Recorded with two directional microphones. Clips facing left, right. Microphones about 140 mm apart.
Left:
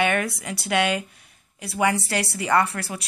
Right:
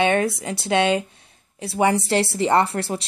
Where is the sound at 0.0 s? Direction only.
25° right (ahead or behind).